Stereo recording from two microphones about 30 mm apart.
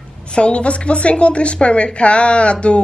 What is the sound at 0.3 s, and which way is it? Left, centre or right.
Speech, left.